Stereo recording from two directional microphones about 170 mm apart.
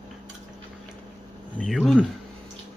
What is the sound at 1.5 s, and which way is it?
Speech, 5° left (ahead or behind).